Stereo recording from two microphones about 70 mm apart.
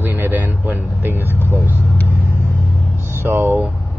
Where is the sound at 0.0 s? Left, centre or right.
Right.